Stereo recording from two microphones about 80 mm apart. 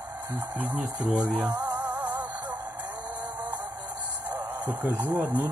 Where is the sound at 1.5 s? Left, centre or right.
Right.